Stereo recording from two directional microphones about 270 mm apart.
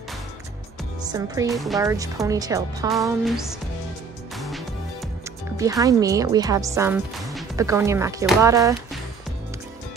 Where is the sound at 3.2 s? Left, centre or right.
Centre.